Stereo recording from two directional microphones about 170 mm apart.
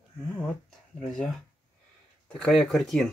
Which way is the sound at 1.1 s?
5° left (ahead or behind).